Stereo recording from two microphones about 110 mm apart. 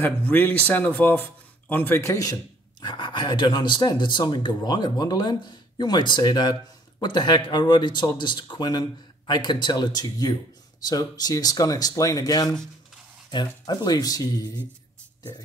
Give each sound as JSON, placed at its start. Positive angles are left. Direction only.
{"t": 0.0, "sound": "a man's voice", "side_deg": 15}
{"t": 2.8, "sound": "speech", "side_deg": 40}
{"t": 13.3, "sound": "speech", "side_deg": 45}